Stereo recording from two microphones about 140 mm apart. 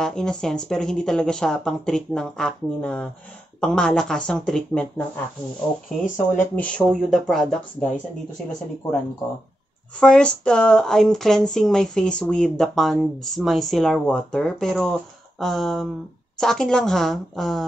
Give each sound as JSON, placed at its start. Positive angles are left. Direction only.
{"t": 0.0, "sound": "speech", "side_deg": 5}
{"t": 6.0, "sound": "speech", "side_deg": 65}
{"t": 6.5, "sound": "speech", "side_deg": 10}
{"t": 9.9, "sound": "speech", "side_deg": 5}